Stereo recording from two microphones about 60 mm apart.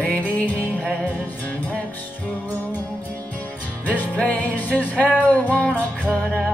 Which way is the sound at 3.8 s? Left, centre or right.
Left.